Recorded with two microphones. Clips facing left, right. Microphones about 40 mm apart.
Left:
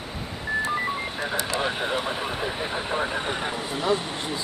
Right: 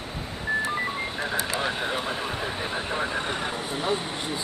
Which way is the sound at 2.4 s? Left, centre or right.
Centre.